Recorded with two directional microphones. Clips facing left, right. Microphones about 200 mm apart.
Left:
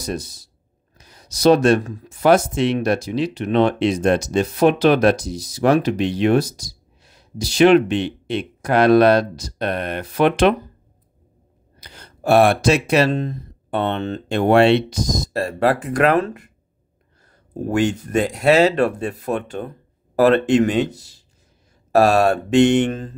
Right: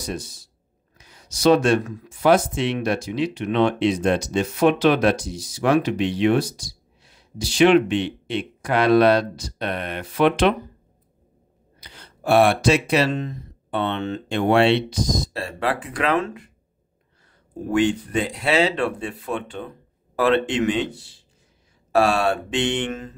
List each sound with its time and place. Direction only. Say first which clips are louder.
0.0 s speech: left 3 dB; 40° left (ahead or behind)
11.8 s speech: left 4 dB; 45° left (ahead or behind)
17.6 s speech: even; 45° left (ahead or behind)